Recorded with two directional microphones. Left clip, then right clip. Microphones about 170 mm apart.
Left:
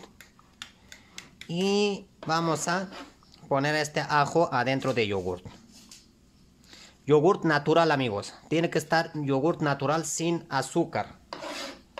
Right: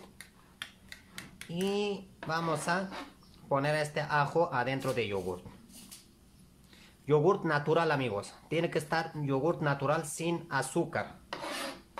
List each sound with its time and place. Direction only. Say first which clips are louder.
1.5 s speech: left 7 dB; 55° left (ahead or behind)
6.7 s speech: left 6 dB; 40° left (ahead or behind)